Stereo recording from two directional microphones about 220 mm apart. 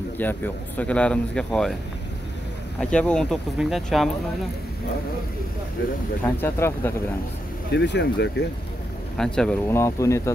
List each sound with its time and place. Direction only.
0.2 s speech: 10° left (ahead or behind)
2.8 s speech: 5° left (ahead or behind)
6.2 s speech: 10° left (ahead or behind)
7.7 s speech: 55° left (ahead or behind)
9.1 s speech: centre (ahead or behind)